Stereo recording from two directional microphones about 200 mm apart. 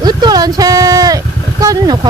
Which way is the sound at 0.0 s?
20° right (ahead or behind).